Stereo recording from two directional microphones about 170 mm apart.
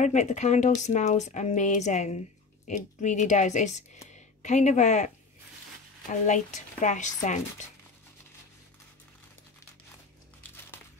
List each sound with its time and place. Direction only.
0.0 s speech: 45° left (ahead or behind)